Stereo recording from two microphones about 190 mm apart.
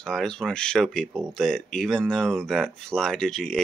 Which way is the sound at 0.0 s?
5° left (ahead or behind).